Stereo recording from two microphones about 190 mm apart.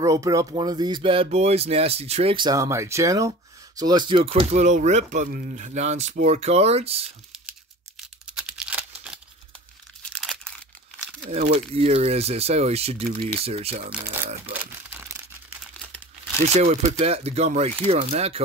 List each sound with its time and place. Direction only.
0.0 s speech: 15° right (ahead or behind)
8.0 s tearing: 5° right (ahead or behind)
10.1 s crunch: 5° left (ahead or behind)
11.0 s crumpling: centre (ahead or behind)
11.7 s speech: 30° right (ahead or behind)
14.5 s crumpling: 10° right (ahead or behind)
16.5 s speech: 35° right (ahead or behind)